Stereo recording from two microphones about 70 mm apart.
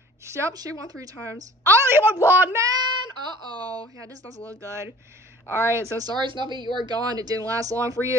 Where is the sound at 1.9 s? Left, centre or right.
Right.